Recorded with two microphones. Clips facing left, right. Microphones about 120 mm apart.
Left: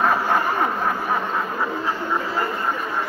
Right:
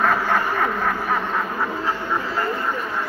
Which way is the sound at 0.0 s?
20° left (ahead or behind).